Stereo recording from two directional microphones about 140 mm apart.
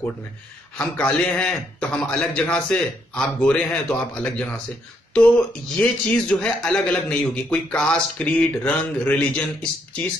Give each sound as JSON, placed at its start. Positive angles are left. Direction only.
{"t": 0.7, "sound": "a man's voice", "side_deg": 10}